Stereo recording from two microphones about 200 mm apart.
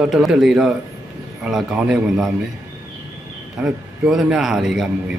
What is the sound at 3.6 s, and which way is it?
A man's voice, 5° right (ahead or behind).